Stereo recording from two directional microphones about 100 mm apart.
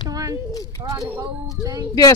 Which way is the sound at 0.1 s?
35° right (ahead or behind).